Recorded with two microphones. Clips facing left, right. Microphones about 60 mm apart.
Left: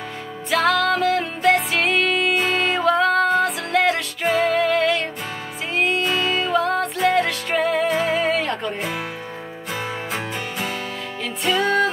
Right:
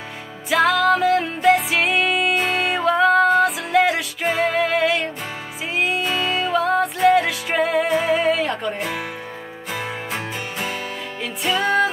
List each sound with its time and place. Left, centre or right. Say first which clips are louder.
0.5 s music: right 2 dB; centre